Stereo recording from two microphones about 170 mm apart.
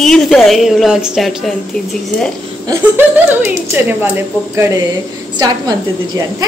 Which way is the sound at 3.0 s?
10° right (ahead or behind).